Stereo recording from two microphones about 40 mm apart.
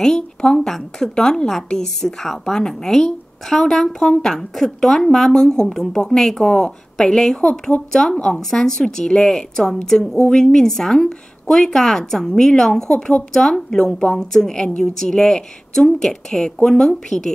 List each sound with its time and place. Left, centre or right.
0.0 s a woman's voice: centre
1.7 s a woman's voice: centre; by 13.4 s left
13.4 s a woman's voice: centre